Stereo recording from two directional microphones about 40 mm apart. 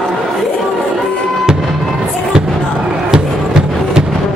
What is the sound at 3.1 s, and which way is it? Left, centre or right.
Music, centre.